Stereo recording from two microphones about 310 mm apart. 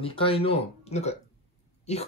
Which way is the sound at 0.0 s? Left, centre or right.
Centre.